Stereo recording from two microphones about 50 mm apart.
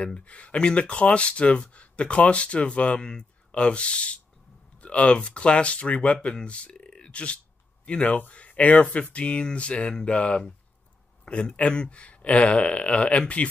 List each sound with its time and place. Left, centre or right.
0.0 s speech: left